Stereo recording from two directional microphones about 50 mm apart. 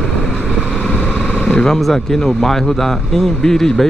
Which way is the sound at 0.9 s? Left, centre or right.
Left.